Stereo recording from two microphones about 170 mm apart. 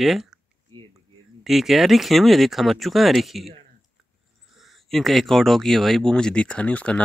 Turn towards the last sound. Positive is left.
turn(degrees=5)  # may be behind; listen again after turning